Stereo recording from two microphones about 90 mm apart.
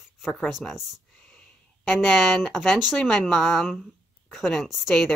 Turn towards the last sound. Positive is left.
turn(degrees=0)  # may be behind; listen again after turning